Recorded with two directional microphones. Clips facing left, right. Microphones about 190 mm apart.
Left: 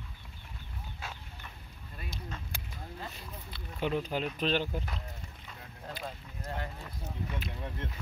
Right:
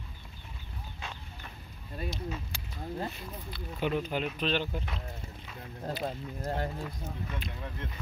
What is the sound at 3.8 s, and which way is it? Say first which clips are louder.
Speech: right 1 dB; 5° right (ahead or behind).